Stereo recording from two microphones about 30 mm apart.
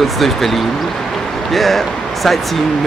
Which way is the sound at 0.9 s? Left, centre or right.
Centre.